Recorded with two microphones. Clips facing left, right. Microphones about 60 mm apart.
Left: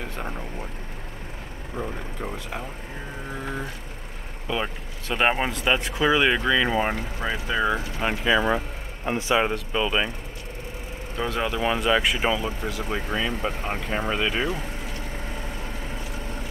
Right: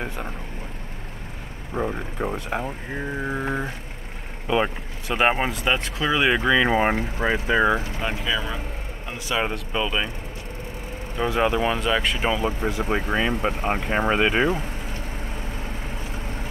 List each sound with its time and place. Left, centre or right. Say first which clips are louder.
1.8 s speech: right 6 dB; right
3.4 s vehicle: right 5 dB; right
5.0 s speech: right 2 dB; centre
6.2 s speech: right 2 dB; centre
6.7 s speech: right 4 dB; right
8.2 s speech: left 7 dB; left
9.4 s speech: left 1 dB; centre
11.1 s speech: right 4 dB; centre
11.6 s speech: left 1 dB; centre
12.4 s speech: right 4 dB; right